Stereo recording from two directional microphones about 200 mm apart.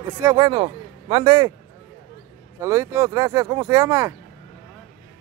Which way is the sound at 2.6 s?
15° right (ahead or behind).